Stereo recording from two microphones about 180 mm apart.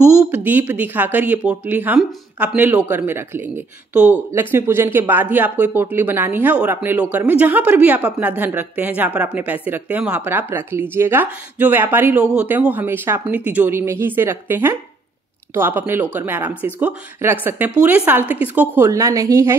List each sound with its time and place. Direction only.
0.0 s speech: 5° right (ahead or behind)